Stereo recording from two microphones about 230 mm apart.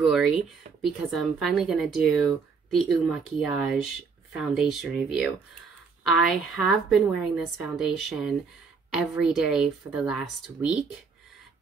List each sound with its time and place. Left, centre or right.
0.0 s speech: centre